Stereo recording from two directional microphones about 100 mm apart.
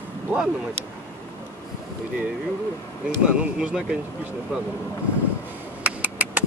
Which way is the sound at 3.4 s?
10° right (ahead or behind).